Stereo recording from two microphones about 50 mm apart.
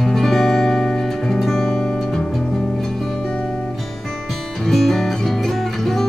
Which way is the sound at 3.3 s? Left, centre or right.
Centre.